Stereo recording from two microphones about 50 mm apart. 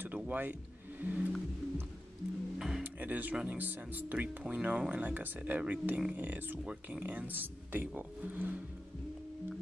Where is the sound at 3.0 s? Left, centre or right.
Right.